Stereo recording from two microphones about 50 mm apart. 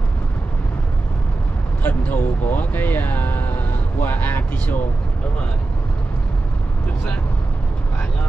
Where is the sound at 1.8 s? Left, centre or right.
Left.